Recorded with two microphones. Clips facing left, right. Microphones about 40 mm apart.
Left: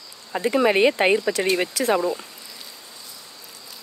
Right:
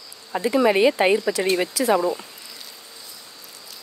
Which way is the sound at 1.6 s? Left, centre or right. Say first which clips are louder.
Right 1 dB; left.